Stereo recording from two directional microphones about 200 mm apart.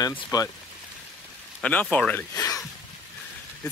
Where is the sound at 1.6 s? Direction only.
5° left (ahead or behind).